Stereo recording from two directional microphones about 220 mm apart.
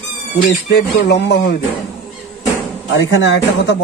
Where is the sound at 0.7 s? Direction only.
50° left (ahead or behind).